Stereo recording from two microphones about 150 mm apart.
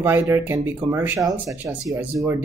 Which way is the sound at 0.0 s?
15° right (ahead or behind).